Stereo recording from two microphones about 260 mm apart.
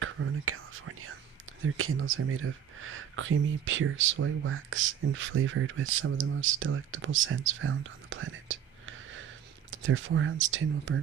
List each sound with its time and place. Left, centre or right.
0.0 s whispering: right
1.6 s speech: right